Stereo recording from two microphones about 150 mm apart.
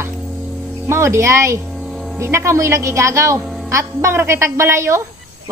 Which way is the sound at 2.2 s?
20° right (ahead or behind).